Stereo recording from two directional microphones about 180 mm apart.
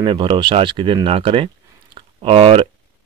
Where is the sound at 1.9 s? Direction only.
30° right (ahead or behind).